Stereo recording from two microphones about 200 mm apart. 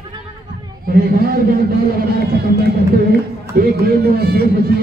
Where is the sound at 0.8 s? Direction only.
50° right (ahead or behind).